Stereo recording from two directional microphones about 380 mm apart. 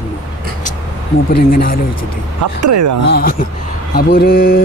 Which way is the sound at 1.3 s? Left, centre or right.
Left.